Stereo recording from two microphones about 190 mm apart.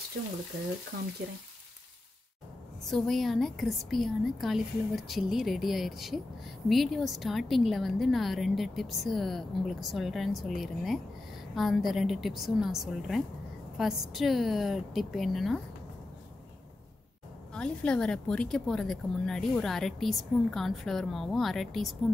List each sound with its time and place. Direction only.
0.9 s speech: 55° right (ahead or behind)
2.9 s a woman's voice: centre (ahead or behind)
17.6 s a woman's voice: 5° left (ahead or behind)